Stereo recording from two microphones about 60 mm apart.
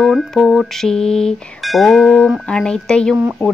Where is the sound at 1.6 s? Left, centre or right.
Centre.